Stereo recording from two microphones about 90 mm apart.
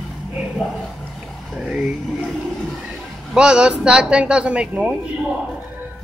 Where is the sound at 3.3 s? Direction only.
10° right (ahead or behind).